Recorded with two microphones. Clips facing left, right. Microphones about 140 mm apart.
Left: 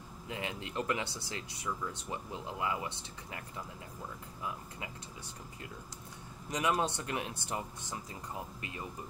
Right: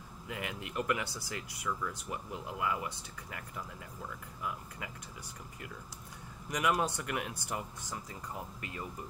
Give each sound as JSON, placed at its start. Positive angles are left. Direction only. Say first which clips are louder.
{"t": 0.3, "sound": "speech", "louder": "left 1 dB", "side_deg": 25}
{"t": 6.5, "sound": "speech", "louder": "even", "side_deg": 25}